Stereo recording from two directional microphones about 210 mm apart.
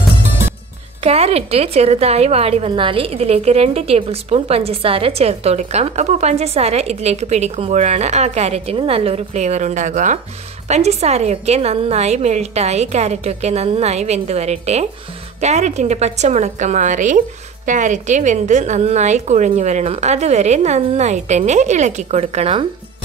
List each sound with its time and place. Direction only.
1.0 s a woman's voice: 30° right (ahead or behind)